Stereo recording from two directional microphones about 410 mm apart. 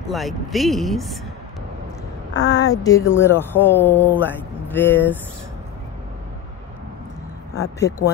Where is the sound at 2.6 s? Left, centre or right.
Centre.